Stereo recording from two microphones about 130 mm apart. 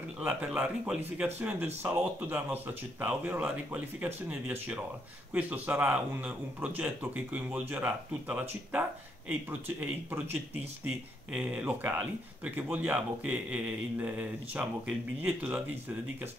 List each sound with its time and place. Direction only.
0.2 s speech: 10° right (ahead or behind)
11.3 s speech: 10° right (ahead or behind)